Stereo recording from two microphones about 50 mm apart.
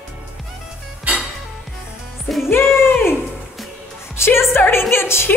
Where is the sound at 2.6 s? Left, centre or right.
Centre.